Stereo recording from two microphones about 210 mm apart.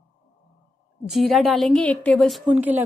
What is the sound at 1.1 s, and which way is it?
A woman's voice, centre (ahead or behind).